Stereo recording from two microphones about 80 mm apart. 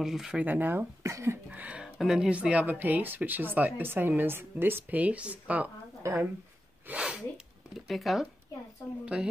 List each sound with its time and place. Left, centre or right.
0.0 s speech: centre
0.5 s speech: right
1.1 s a sound: right
1.5 s speech: centre
2.0 s speech: centre
6.0 s a sound: right
6.9 s speech: centre
7.9 s speech: centre
9.0 s speech: centre